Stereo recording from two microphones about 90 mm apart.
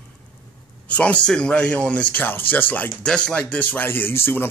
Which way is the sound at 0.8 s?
15° left (ahead or behind).